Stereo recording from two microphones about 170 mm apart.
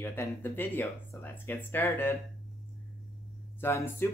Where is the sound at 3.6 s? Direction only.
15° left (ahead or behind).